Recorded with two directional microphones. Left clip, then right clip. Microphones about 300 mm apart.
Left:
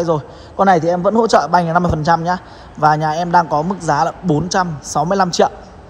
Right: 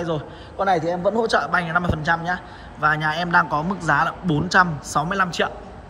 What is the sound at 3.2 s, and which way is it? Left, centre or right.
Speech, centre.